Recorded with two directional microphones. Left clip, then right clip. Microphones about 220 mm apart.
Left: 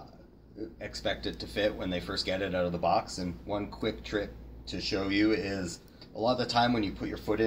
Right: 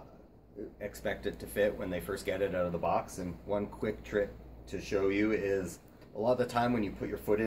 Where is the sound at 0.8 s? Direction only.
15° right (ahead or behind).